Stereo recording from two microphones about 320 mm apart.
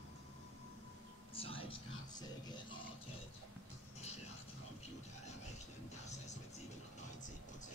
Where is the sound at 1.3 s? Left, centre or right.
Centre.